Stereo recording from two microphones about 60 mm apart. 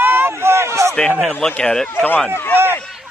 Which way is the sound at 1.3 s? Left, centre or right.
Centre.